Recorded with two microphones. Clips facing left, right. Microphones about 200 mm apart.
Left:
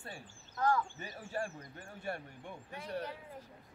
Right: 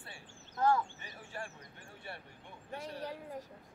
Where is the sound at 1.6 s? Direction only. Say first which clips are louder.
Left 4 dB; 50° left (ahead or behind).